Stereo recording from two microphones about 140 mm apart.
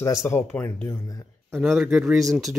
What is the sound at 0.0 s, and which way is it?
Speech, 20° left (ahead or behind).